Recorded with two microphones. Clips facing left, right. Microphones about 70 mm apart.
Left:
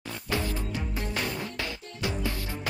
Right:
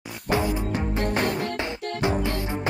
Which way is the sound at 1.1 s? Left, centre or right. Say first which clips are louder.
Right 6 dB; right.